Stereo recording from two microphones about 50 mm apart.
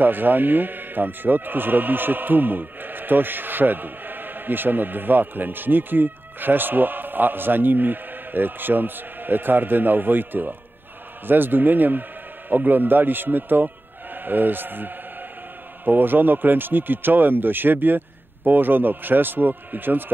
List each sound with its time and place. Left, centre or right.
0.0 s speech: right